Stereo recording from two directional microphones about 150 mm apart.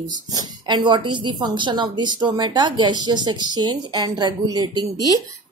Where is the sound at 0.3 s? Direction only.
30° right (ahead or behind).